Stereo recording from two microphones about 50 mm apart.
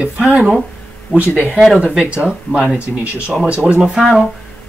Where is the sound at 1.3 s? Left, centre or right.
Right.